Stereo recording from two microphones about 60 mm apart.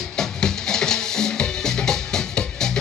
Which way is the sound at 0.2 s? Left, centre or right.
Centre.